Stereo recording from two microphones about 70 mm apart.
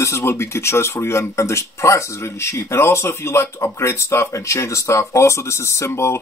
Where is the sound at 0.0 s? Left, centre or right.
Left.